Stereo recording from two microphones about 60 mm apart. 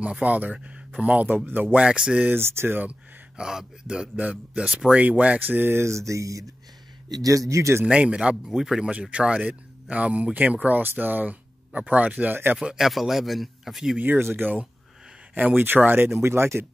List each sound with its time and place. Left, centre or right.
0.2 s speech: right
1.8 s speech: centre
2.2 s speech: right
2.9 s speech: centre
5.0 s speech: right
5.5 s speech: right
5.9 s speech: right
7.1 s speech: right
7.8 s speech: centre
12.7 s a man's voice: centre
13.9 s speech: right
15.6 s speech: right